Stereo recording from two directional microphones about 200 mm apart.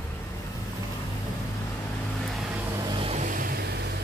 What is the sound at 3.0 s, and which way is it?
Vehicle, 35° right (ahead or behind).